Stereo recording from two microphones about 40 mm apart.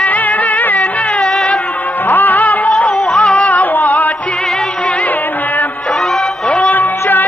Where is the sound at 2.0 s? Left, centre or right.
Left.